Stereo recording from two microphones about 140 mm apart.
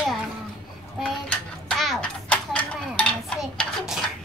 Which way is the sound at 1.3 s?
5° left (ahead or behind).